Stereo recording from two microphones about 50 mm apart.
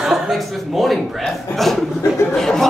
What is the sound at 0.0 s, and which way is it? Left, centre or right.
A man's voice, centre.